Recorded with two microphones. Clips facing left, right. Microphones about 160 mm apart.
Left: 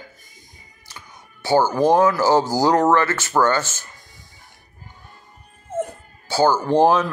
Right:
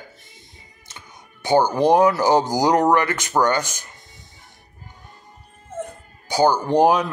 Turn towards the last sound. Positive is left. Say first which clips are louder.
# left 1 dB
turn(degrees=-15)  # may be behind; listen again after turning